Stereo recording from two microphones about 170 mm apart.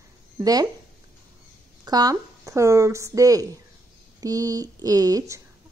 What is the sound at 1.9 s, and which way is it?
Speech, 25° right (ahead or behind).